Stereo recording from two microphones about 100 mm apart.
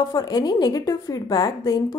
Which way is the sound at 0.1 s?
40° left (ahead or behind).